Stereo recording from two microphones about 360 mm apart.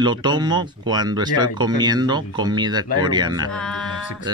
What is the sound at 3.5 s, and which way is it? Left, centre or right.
Music, centre.